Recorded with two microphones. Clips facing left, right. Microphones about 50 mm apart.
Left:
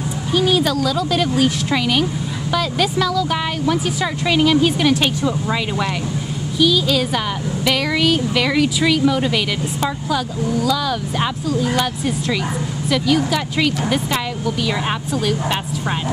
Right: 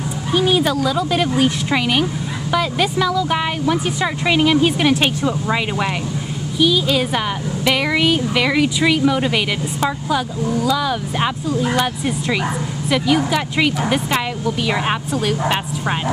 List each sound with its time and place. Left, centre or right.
0.3 s a woman's voice: centre